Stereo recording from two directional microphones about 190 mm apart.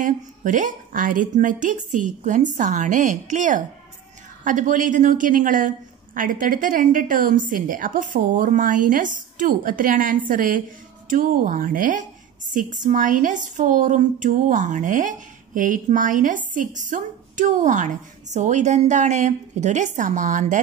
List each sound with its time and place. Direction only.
0.0 s a woman's voice: 45° right (ahead or behind)